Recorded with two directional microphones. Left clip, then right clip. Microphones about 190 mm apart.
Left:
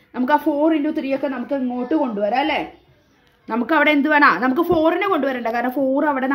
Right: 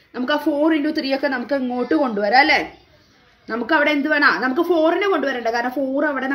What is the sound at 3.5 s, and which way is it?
Speech, 40° left (ahead or behind).